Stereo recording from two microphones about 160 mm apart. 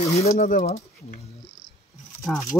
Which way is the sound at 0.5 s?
45° left (ahead or behind).